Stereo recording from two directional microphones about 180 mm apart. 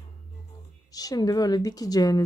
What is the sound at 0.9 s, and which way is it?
A woman's voice, 20° left (ahead or behind).